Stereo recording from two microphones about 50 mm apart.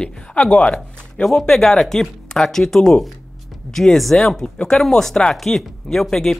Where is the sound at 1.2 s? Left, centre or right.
Centre.